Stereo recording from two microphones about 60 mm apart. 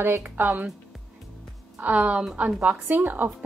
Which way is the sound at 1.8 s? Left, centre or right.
Right.